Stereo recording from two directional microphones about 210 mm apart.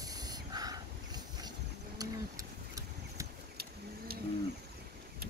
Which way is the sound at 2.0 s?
15° right (ahead or behind).